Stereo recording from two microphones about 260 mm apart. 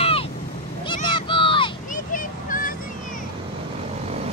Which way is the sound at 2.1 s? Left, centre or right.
Left.